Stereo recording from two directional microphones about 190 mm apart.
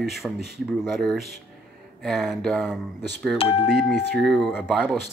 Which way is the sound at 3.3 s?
30° left (ahead or behind).